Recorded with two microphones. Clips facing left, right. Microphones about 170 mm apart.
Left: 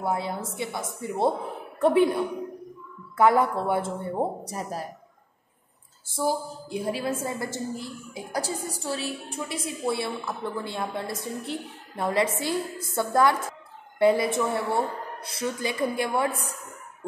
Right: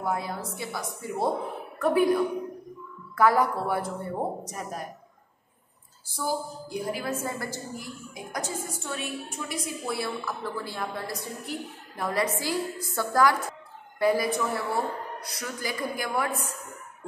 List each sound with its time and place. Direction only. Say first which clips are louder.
0.0 s a woman's voice: left 2 dB; 25° left (ahead or behind)
6.1 s a woman's voice: left 3 dB; 25° left (ahead or behind)